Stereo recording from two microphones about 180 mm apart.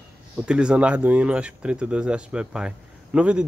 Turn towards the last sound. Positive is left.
turn(degrees=-5)  # may be behind; listen again after turning